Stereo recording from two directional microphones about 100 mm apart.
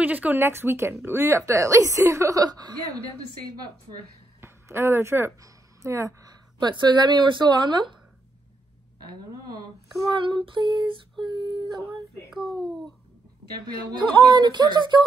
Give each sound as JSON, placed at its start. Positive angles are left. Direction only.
{"t": 0.0, "sound": "a woman's voice", "side_deg": -15}
{"t": 4.4, "sound": "speech", "side_deg": -25}
{"t": 10.1, "sound": "female singing", "side_deg": -55}
{"t": 11.2, "sound": "speech", "side_deg": -50}
{"t": 12.3, "sound": "a child's voice", "side_deg": 0}
{"t": 13.8, "sound": "speech", "side_deg": -45}